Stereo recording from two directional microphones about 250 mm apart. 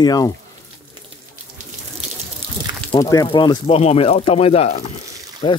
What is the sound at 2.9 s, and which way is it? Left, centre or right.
Speech, centre.